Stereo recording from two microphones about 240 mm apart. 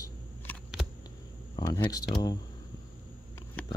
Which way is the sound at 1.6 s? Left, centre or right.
Centre.